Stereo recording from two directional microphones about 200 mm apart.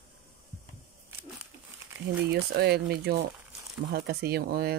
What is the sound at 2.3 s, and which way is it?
Speech, 55° right (ahead or behind).